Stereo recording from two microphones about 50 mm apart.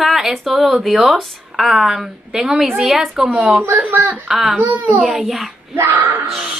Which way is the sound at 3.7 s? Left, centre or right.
Right.